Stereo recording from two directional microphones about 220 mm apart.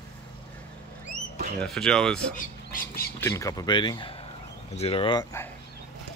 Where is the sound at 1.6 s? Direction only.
Centre (ahead or behind).